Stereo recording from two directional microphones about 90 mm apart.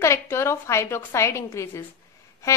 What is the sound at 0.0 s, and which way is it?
A woman's voice, 30° left (ahead or behind).